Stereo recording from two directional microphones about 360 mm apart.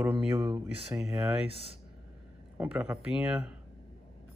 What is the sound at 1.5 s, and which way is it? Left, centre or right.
Speech, centre.